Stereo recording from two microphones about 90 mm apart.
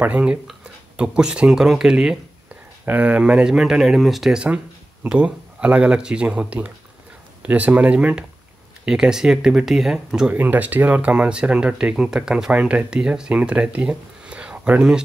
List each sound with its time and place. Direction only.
0.0 s speech: 15° right (ahead or behind)
2.8 s speech: 20° right (ahead or behind)
10.3 s speech: 20° right (ahead or behind)